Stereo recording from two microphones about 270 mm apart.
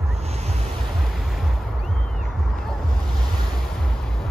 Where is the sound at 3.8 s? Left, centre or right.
Centre.